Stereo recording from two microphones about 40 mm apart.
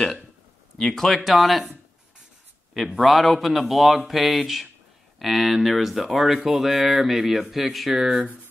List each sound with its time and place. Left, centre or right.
0.7 s speech: centre
2.7 s speech: centre